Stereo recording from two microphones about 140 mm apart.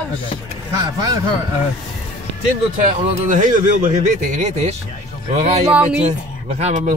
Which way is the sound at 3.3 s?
65° right (ahead or behind).